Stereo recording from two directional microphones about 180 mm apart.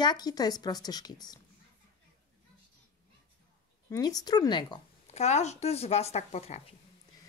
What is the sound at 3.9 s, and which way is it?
Speech, 20° left (ahead or behind).